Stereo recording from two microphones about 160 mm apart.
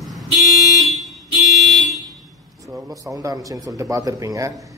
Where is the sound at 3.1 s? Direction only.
20° right (ahead or behind).